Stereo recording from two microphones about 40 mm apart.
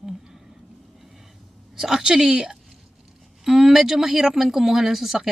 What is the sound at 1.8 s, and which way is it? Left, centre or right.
A woman's voice, centre.